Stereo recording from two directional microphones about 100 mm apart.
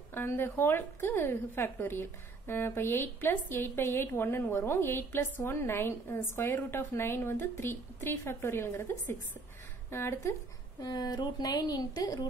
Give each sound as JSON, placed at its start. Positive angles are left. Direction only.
{"t": 0.1, "sound": "a woman's voice", "side_deg": 20}
{"t": 9.8, "sound": "a woman's voice", "side_deg": 25}
{"t": 10.8, "sound": "speech", "side_deg": 40}